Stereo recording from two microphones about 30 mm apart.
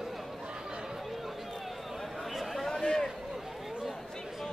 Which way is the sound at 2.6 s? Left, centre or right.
Centre.